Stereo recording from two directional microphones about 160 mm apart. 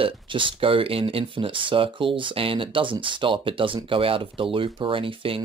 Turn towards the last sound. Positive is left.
turn(degrees=-35)  # may be behind; listen again after turning